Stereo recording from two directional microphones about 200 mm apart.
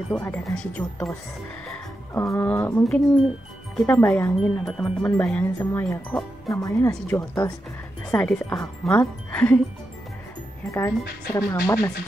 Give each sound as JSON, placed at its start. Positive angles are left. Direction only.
{"t": 0.1, "sound": "speech", "side_deg": 10}
{"t": 2.1, "sound": "speech", "side_deg": 15}
{"t": 6.5, "sound": "speech", "side_deg": 15}
{"t": 11.3, "sound": "speech", "side_deg": 15}